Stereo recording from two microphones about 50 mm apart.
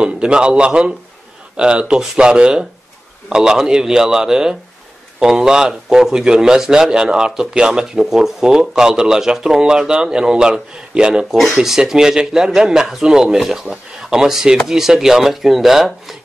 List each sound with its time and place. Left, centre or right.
0.0 s a man's voice: centre
11.3 s a man's voice: centre